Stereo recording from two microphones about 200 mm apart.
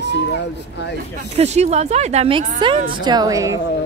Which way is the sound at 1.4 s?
35° right (ahead or behind).